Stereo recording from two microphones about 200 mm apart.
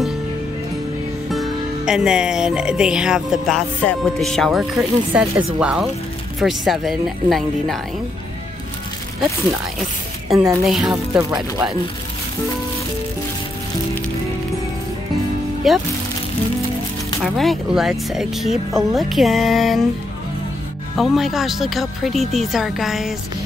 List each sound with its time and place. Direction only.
1.3 s speech: centre (ahead or behind)
10.6 s speech: centre (ahead or behind)
11.1 s speech: 20° right (ahead or behind)
15.7 s speech: centre (ahead or behind)
17.2 s speech: centre (ahead or behind)
20.9 s speech: centre (ahead or behind)